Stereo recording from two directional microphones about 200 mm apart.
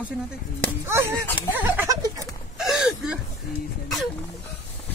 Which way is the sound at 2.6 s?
Centre (ahead or behind).